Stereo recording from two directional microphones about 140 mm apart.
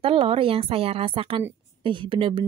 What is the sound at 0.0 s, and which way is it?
A woman's voice, 40° right (ahead or behind).